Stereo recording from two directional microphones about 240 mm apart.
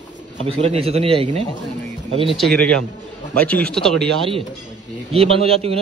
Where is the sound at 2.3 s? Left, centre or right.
Centre.